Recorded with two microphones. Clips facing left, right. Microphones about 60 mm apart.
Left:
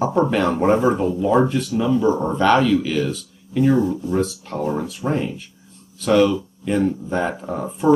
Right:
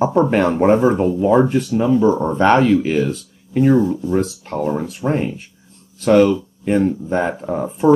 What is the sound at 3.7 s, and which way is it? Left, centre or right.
Speech, centre.